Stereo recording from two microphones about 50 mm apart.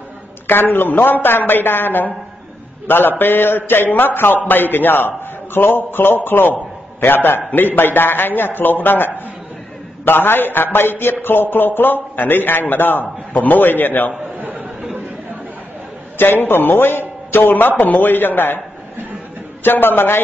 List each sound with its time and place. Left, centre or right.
0.5 s a man's voice: left
16.2 s a man's voice: left
19.6 s a man's voice: left